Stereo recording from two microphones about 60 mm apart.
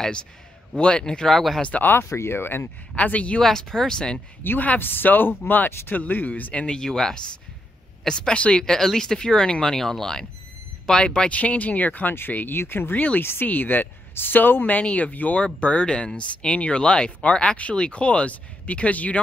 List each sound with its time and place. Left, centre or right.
0.7 s speech: centre
1.6 s speech: left
1.9 s speech: left
3.0 s speech: left
3.3 s speech: centre
4.4 s speech: left